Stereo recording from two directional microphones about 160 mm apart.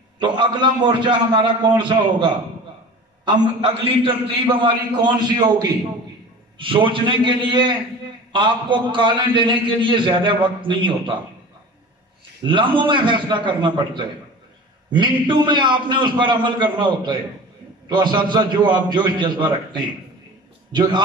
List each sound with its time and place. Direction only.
0.2 s a man's voice: 30° right (ahead or behind)
12.4 s a man's voice: 30° right (ahead or behind)